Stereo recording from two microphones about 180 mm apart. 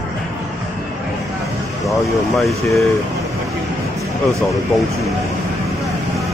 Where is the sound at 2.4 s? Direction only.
Centre (ahead or behind).